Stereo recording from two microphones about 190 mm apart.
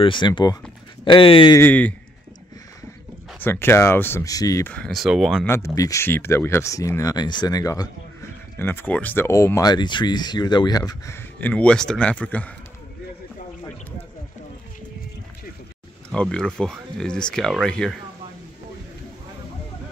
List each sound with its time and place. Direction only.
0.0 s speech: 25° left (ahead or behind)
1.6 s speech: 10° left (ahead or behind)
3.3 s speech: 10° left (ahead or behind)
4.7 s speech: centre (ahead or behind)
5.5 s speech: 15° left (ahead or behind)
16.1 s speech: 5° left (ahead or behind)